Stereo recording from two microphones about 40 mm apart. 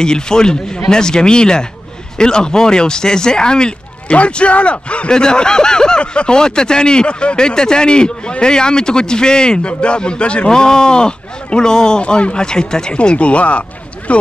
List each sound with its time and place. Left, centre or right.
0.0 s speech: centre